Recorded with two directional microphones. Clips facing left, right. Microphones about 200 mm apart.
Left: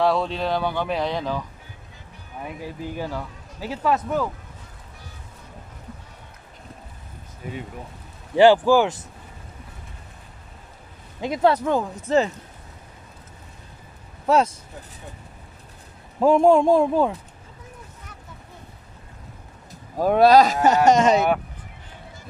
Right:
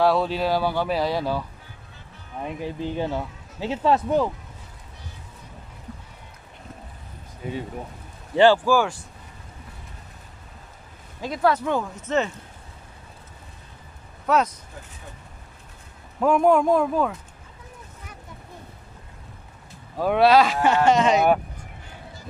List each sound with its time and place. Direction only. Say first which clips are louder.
0.0 s speech: right 1 dB; 5° right (ahead or behind)
2.4 s speech: right 3 dB; 25° right (ahead or behind)
8.4 s a man's voice: left 2 dB; 15° left (ahead or behind)
11.1 s a man's voice: left 3 dB; 20° left (ahead or behind)
11.5 s speech: left 2 dB; 40° left (ahead or behind)
14.2 s a man's voice: left 2 dB; 30° left (ahead or behind)
16.2 s a man's voice: left 3 dB; 30° left (ahead or behind)
20.0 s speech: left 2 dB; 40° left (ahead or behind)